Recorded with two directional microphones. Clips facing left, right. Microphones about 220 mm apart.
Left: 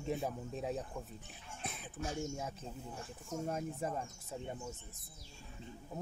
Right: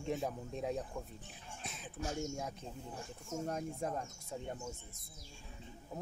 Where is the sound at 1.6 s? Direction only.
55° left (ahead or behind).